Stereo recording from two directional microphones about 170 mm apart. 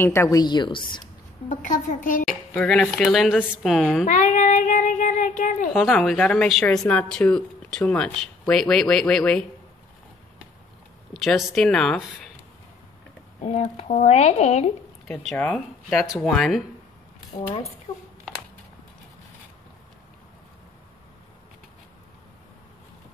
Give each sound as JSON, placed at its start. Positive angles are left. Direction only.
{"t": 0.0, "sound": "a woman's voice", "side_deg": 15}
{"t": 1.5, "sound": "a woman's voice", "side_deg": 45}
{"t": 2.2, "sound": "speech", "side_deg": 5}
{"t": 4.0, "sound": "child singing", "side_deg": 50}
{"t": 5.8, "sound": "speech", "side_deg": 0}
{"t": 11.1, "sound": "speech", "side_deg": 0}
{"t": 13.4, "sound": "speech", "side_deg": 40}
{"t": 15.0, "sound": "speech", "side_deg": 5}